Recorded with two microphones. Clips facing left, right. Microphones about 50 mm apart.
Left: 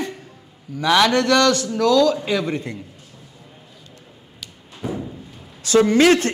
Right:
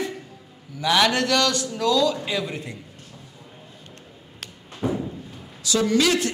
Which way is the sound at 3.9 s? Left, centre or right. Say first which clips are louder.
Even; right.